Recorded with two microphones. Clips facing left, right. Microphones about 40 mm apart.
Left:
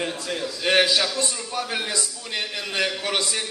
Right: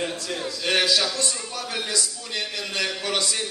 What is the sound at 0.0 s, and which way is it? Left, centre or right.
A man's voice, centre.